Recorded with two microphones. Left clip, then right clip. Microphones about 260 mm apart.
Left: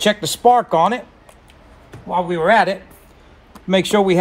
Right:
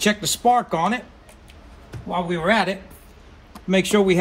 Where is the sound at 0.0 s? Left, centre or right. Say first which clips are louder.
Left 5 dB; left.